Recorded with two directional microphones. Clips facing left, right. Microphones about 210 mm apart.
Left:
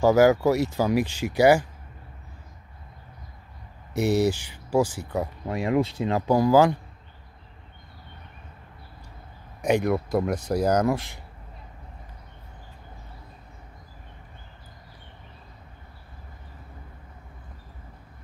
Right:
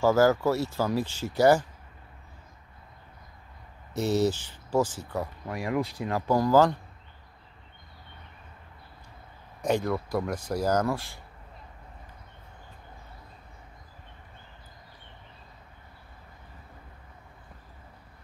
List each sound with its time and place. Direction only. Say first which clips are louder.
0.0 s speech: left 4 dB; 15° left (ahead or behind)
3.9 s speech: left 3 dB; 10° left (ahead or behind)
6.3 s speech: left 3 dB; 10° left (ahead or behind)
9.6 s speech: left 4 dB; 15° left (ahead or behind)